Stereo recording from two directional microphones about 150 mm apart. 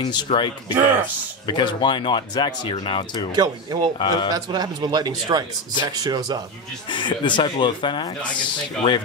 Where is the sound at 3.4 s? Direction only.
30° right (ahead or behind).